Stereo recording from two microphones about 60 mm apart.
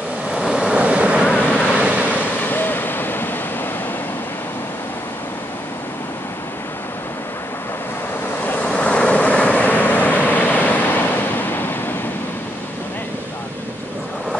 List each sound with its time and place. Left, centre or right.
0.3 s vehicle: centre
1.8 s waves: right
2.4 s waves: left
8.5 s vehicle: left